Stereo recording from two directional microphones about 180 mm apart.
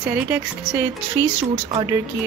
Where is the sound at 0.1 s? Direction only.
10° right (ahead or behind).